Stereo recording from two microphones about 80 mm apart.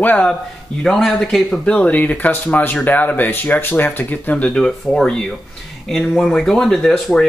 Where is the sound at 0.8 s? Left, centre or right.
Centre.